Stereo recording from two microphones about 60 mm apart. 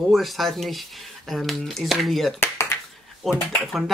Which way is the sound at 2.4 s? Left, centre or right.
Left.